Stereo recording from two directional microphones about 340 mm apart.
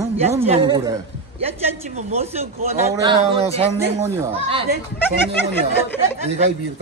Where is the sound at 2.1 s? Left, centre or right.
Centre.